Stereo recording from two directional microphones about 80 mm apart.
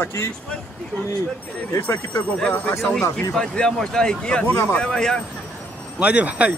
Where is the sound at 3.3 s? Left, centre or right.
Centre.